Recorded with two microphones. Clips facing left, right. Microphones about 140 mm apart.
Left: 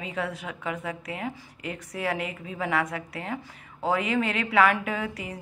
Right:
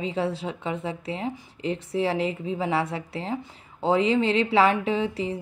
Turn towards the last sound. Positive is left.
turn(degrees=-25)  # may be behind; listen again after turning